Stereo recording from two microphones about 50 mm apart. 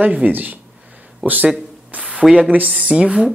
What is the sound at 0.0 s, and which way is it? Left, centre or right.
Speech, right.